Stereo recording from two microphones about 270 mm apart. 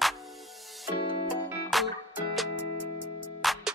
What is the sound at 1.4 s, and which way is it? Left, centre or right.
Music, centre.